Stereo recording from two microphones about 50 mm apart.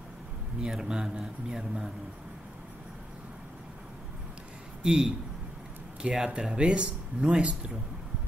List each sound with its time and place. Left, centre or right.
0.6 s speech: centre
4.8 s speech: centre
6.1 s speech: centre